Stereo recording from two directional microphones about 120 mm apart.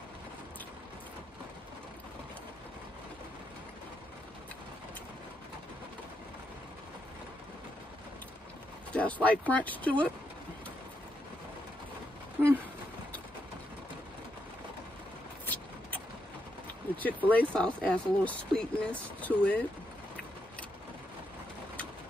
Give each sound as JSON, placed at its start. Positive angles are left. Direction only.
{"t": 8.9, "sound": "speech", "side_deg": 10}
{"t": 12.4, "sound": "a sound", "side_deg": -20}
{"t": 15.4, "sound": "vehicle", "side_deg": 15}
{"t": 16.9, "sound": "speech", "side_deg": 15}